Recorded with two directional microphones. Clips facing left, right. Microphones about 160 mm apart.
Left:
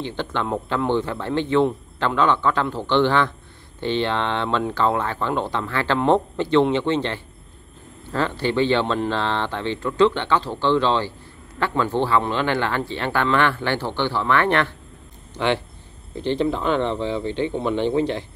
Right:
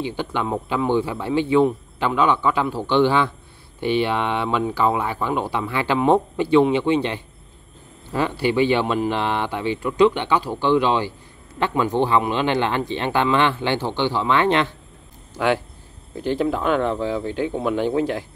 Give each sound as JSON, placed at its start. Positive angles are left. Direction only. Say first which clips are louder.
{"t": 0.0, "sound": "speech", "louder": "right 1 dB", "side_deg": -10}
{"t": 15.3, "sound": "speech", "louder": "right 1 dB", "side_deg": -5}